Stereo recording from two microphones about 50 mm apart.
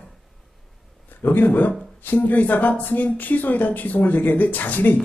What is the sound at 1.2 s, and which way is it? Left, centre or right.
Speech, left.